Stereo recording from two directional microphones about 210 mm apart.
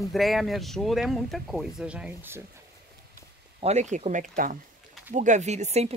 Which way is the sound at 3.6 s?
35° right (ahead or behind).